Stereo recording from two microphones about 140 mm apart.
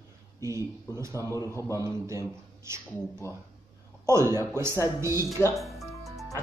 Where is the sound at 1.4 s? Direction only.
20° left (ahead or behind).